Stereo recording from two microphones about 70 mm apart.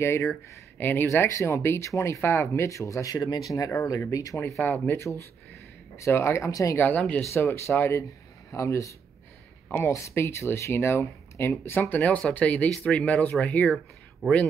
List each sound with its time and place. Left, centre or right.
0.0 s speech: left
1.0 s speech: left
4.4 s speech: left
6.8 s speech: left
7.3 s speech: left
9.7 s speech: left
9.9 s speech: left
11.9 s speech: left